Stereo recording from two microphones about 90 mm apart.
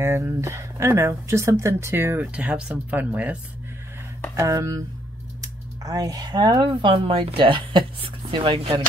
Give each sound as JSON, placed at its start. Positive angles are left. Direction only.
{"t": 0.0, "sound": "speech", "side_deg": -30}
{"t": 2.3, "sound": "speech", "side_deg": -10}
{"t": 4.4, "sound": "speech", "side_deg": -35}
{"t": 8.3, "sound": "speech", "side_deg": -75}